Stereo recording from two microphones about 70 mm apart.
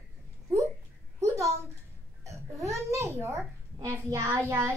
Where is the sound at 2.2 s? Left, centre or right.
Right.